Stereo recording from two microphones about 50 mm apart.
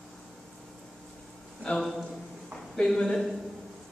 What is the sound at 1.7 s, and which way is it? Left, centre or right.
Speech, left.